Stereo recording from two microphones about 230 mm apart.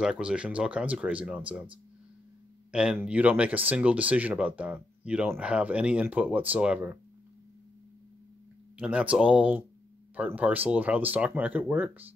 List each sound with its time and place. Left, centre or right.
0.0 s speech: centre
2.7 s speech: centre
8.7 s speech: centre